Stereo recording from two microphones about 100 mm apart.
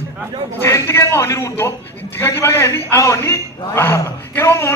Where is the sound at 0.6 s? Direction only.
30° left (ahead or behind).